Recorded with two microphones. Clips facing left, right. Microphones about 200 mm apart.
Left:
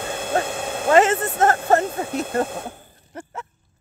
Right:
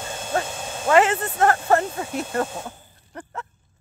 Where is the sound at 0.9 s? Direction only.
35° left (ahead or behind).